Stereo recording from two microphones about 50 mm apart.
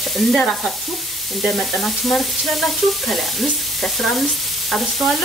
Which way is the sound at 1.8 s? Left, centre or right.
Centre.